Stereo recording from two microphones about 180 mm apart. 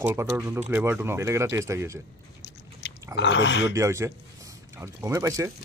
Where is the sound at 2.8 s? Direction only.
75° left (ahead or behind).